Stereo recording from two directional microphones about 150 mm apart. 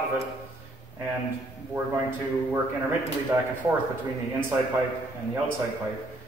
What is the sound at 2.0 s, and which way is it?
A man's voice, 20° right (ahead or behind).